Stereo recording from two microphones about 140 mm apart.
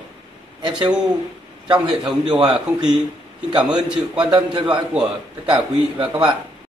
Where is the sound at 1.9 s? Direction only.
5° right (ahead or behind).